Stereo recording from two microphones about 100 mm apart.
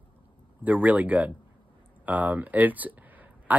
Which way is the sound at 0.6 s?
15° right (ahead or behind).